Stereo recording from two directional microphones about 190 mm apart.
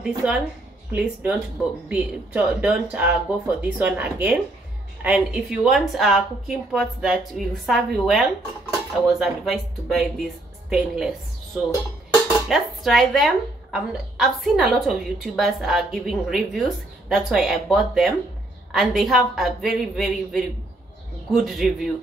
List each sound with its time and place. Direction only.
0.0 s speech: 5° right (ahead or behind)
12.3 s speech: centre (ahead or behind)